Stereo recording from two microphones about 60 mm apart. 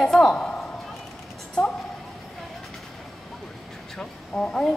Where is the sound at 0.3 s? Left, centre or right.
Centre.